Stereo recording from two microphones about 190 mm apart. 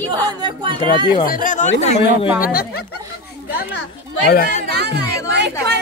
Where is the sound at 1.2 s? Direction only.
45° left (ahead or behind).